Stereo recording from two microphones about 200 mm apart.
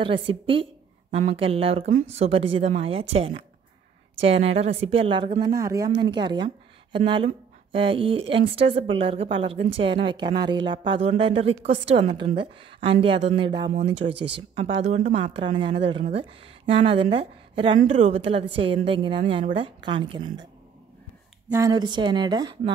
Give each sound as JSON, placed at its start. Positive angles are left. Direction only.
{"t": 0.0, "sound": "speech", "side_deg": -25}
{"t": 13.7, "sound": "speech", "side_deg": -35}
{"t": 21.5, "sound": "speech", "side_deg": -15}